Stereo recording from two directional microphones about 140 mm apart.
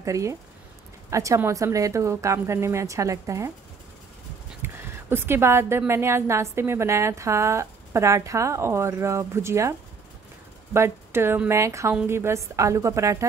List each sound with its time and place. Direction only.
0.0 s speech: 20° right (ahead or behind)
4.6 s a woman's voice: 15° right (ahead or behind)